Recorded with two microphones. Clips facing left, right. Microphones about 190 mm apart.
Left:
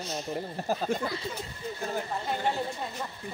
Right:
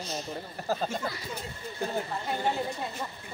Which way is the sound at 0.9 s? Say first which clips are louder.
Left 5 dB; 60° left (ahead or behind).